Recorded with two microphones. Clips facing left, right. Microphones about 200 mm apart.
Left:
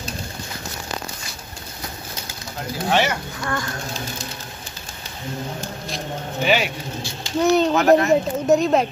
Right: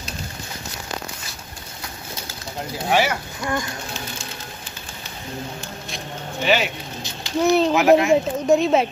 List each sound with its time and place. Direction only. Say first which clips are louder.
2.9 s speech: even; 10° right (ahead or behind)
6.4 s speech: even; 5° left (ahead or behind)